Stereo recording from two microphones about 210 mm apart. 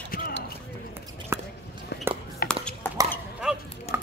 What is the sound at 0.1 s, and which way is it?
Basketball bounce, 45° left (ahead or behind).